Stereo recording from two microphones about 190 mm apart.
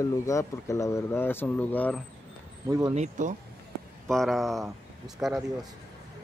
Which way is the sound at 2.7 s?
15° right (ahead or behind).